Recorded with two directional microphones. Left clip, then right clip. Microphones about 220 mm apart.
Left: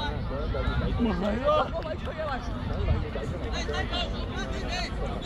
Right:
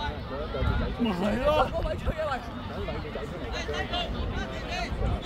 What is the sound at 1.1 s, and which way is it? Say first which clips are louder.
Speech: even; 55° right (ahead or behind).